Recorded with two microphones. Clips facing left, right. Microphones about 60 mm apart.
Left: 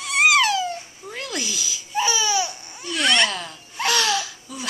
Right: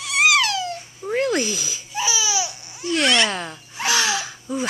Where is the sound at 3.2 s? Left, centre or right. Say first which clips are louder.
Right 3 dB; right.